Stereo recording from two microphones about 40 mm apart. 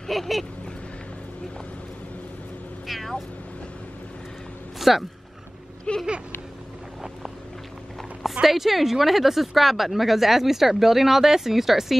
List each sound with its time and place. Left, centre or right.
0.0 s speech: centre
2.9 s vehicle: centre
4.7 s a sound: centre
5.9 s speech: left
8.4 s speech: centre